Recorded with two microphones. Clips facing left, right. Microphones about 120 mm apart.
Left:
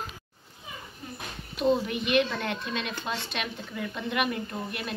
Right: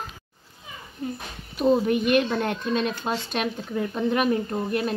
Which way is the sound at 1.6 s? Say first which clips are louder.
Right 5 dB; 45° right (ahead or behind).